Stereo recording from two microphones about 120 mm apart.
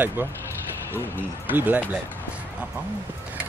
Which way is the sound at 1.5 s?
15° right (ahead or behind).